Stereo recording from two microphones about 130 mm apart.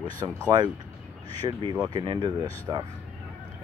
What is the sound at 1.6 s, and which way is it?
Speech, 30° right (ahead or behind).